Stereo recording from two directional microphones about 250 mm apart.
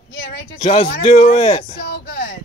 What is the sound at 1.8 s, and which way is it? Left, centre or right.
Music, left.